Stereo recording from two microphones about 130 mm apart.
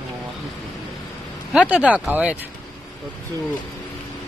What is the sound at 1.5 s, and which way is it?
Speech, 10° right (ahead or behind).